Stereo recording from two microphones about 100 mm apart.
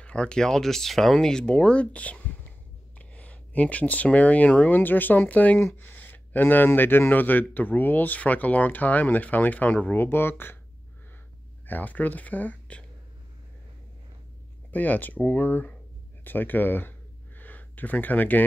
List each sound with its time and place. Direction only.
0.0 s speech: 10° left (ahead or behind)
11.6 s speech: 15° left (ahead or behind)
14.7 s speech: 15° left (ahead or behind)
17.4 s a sound: 15° left (ahead or behind)